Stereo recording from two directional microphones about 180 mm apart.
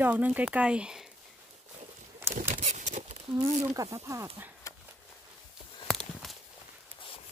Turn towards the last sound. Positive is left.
turn(degrees=0)  # may be behind; listen again after turning